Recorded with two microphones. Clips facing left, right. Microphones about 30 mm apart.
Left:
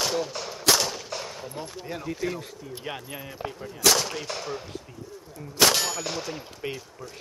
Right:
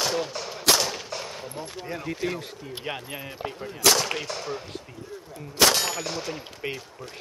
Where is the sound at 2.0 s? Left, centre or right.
Centre.